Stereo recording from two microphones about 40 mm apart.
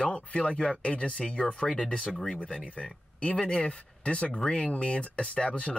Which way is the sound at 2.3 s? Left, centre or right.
Left.